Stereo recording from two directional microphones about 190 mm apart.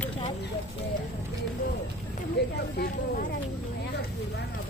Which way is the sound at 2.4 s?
60° left (ahead or behind).